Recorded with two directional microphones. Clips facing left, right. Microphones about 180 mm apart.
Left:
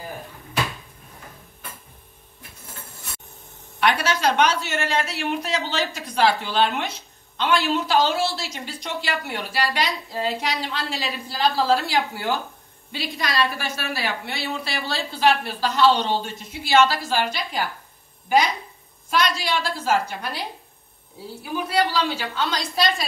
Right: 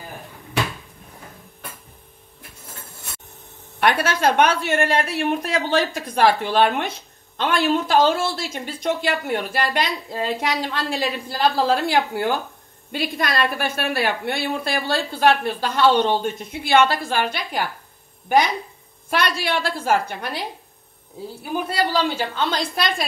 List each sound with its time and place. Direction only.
3.8 s a woman's voice: 50° right (ahead or behind)
19.0 s a woman's voice: 55° right (ahead or behind)
21.6 s a woman's voice: 55° right (ahead or behind)